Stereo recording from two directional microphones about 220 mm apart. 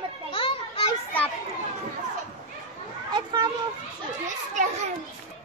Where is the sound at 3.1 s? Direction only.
20° right (ahead or behind).